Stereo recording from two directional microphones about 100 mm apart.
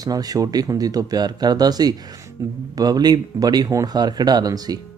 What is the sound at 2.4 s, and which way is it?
Speech, 30° right (ahead or behind).